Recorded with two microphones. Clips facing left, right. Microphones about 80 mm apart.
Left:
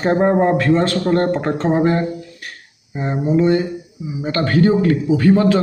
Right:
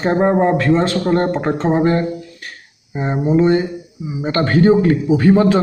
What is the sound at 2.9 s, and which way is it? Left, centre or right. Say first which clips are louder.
A man's voice: right 2 dB; right.